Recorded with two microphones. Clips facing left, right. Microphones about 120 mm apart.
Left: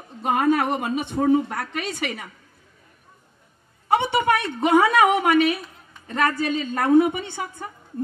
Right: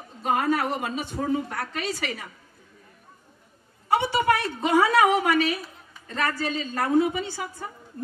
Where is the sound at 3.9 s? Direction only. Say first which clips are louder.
Left 2 dB; 25° left (ahead or behind).